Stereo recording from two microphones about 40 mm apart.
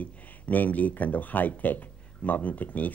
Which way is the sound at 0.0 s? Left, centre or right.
Left.